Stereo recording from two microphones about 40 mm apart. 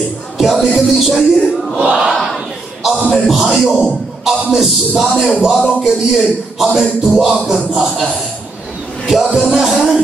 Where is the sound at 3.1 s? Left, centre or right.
Centre.